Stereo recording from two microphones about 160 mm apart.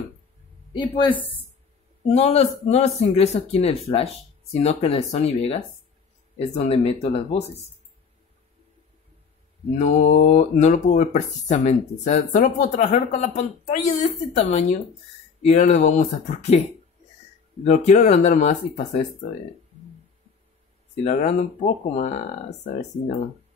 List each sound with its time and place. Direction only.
0.7 s speech: 30° left (ahead or behind)
2.0 s speech: 40° left (ahead or behind)
9.8 s speech: 45° left (ahead or behind)
17.6 s speech: 50° left (ahead or behind)
21.0 s speech: 45° left (ahead or behind)